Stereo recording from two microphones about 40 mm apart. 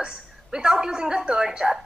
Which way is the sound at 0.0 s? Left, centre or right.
Centre.